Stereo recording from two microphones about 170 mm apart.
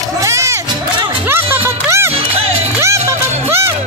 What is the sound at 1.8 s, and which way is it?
Music, 15° right (ahead or behind).